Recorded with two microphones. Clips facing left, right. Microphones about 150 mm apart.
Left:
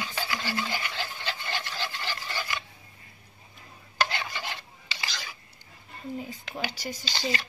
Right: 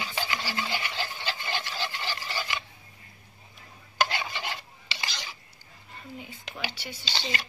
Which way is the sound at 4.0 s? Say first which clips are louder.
Right 1 dB; 15° right (ahead or behind).